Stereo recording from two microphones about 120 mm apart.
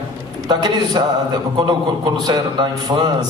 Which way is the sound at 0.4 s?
35° right (ahead or behind).